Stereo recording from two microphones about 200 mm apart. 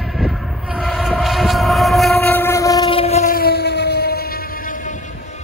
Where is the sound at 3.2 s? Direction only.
50° left (ahead or behind).